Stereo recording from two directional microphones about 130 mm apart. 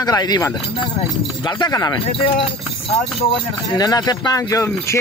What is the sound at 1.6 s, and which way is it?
Speech, 30° left (ahead or behind).